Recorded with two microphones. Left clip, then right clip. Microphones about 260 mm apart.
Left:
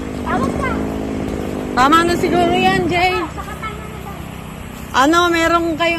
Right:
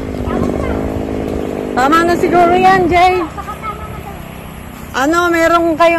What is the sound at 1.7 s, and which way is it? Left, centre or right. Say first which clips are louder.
Speech: right 1 dB; centre.